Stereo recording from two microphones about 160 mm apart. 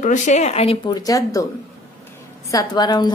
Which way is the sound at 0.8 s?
20° left (ahead or behind).